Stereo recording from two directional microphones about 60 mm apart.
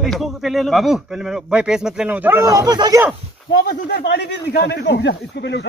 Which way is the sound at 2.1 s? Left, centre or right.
Right.